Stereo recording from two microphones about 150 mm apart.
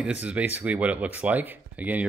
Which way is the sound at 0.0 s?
10° right (ahead or behind).